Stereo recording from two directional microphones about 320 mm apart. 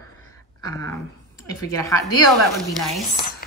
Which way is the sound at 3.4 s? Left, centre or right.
Left.